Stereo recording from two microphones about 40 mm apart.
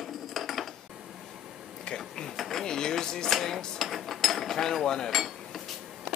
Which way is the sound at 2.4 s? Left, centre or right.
Centre.